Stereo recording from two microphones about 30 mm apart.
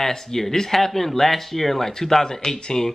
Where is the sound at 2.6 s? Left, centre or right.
Left.